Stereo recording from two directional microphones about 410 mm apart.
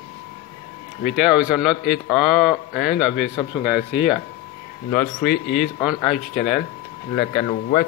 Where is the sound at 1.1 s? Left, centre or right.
Centre.